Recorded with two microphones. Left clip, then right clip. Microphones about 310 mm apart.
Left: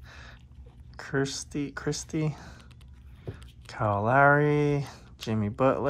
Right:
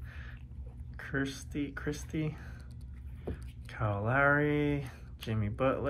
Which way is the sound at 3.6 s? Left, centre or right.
Left.